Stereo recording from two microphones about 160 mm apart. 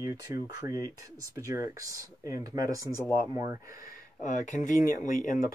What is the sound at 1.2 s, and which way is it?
Speech, 20° right (ahead or behind).